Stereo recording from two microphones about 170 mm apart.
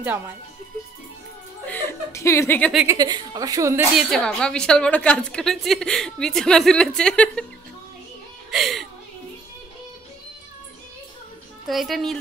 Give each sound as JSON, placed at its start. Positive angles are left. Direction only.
{"t": 1.7, "sound": "speech", "side_deg": 15}
{"t": 2.9, "sound": "a woman's voice", "side_deg": -20}
{"t": 3.9, "sound": "a woman's voice", "side_deg": 0}
{"t": 8.5, "sound": "a sound", "side_deg": 0}
{"t": 11.6, "sound": "a woman's voice", "side_deg": 0}